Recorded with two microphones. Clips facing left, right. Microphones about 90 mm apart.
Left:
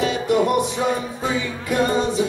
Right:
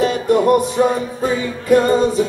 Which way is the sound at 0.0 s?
40° right (ahead or behind).